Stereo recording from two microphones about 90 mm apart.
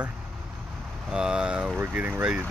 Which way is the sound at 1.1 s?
10° right (ahead or behind).